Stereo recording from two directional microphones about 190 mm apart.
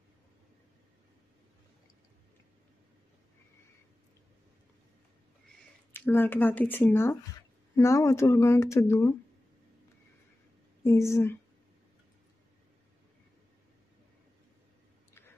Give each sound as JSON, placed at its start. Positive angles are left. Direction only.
{"t": 5.9, "sound": "speech", "side_deg": 10}
{"t": 10.8, "sound": "speech", "side_deg": 15}